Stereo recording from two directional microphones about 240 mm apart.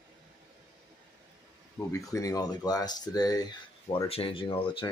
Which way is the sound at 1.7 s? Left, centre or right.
Centre.